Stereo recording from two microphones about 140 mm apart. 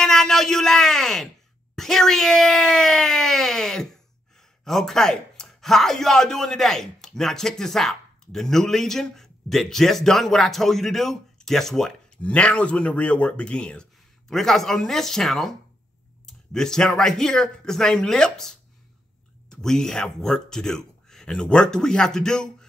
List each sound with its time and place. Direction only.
0.0 s speech: 5° left (ahead or behind)
19.5 s speech: 5° left (ahead or behind)